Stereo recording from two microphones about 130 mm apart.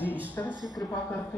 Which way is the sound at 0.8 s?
30° left (ahead or behind).